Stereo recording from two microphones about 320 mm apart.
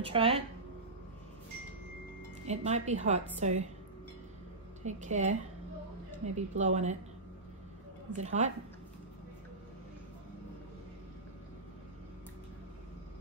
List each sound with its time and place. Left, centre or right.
0.0 s speech: centre
2.4 s a woman's voice: right
4.8 s a woman's voice: right
8.1 s a woman's voice: right